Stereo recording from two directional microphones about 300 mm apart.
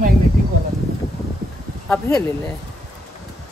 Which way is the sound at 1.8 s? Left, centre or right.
Centre.